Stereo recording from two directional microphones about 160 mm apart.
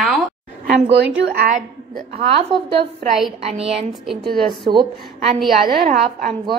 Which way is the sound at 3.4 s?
40° right (ahead or behind).